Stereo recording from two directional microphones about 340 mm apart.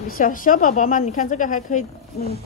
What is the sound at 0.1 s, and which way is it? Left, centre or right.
A woman's voice, left.